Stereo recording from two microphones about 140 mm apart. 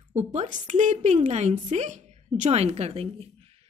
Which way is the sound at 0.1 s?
55° right (ahead or behind).